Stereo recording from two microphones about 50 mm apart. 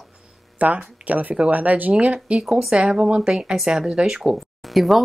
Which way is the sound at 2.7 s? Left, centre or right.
Centre.